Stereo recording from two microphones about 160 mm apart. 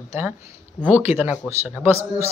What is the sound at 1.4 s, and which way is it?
Speech, 10° left (ahead or behind).